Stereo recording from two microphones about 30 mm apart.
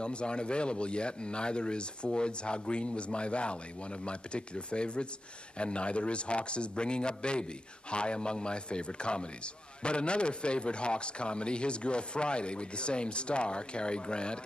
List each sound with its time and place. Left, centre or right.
0.0 s a man's voice: left